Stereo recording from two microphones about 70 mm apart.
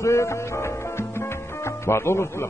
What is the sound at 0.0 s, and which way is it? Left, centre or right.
Speech, left.